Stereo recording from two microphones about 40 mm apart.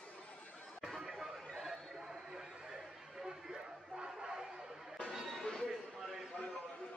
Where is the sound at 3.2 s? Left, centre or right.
Centre.